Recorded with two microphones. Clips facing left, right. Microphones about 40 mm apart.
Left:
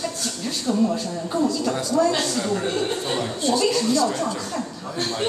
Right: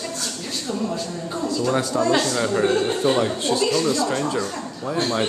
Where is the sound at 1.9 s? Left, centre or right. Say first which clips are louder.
Left 2 dB; right.